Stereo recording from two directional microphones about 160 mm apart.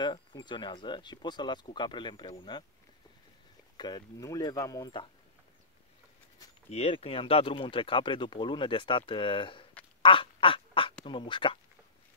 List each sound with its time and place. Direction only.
0.0 s speech: 30° left (ahead or behind)
3.7 s speech: 25° left (ahead or behind)
6.7 s speech: 40° left (ahead or behind)
10.0 s duck: 30° left (ahead or behind)
11.1 s speech: 30° left (ahead or behind)